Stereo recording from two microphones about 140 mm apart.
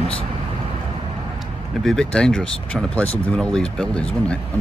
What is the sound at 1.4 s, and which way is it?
Speech, centre (ahead or behind).